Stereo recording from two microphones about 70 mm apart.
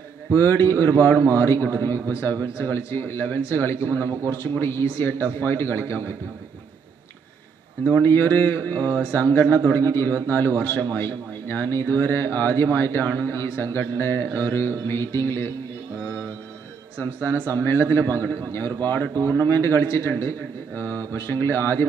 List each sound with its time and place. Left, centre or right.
0.3 s a man's voice: left
8.0 s a man's voice: left
11.0 s a man's voice: left
17.0 s a man's voice: left